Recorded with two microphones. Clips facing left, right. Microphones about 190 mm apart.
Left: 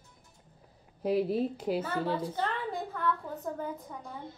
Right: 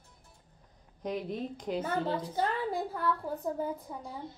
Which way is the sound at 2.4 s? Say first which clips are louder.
Right 2 dB; 10° right (ahead or behind).